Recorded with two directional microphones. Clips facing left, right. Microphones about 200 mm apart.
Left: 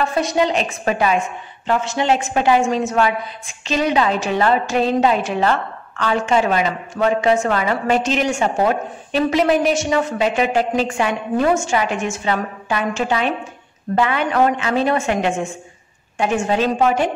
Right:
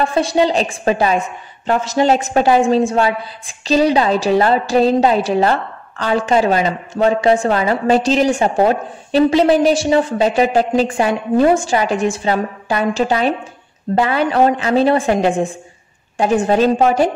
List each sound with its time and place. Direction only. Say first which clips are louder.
0.0 s a woman's voice: right 3 dB; 30° right (ahead or behind)